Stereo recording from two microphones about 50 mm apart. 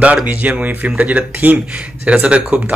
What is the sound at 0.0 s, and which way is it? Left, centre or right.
Speech, right.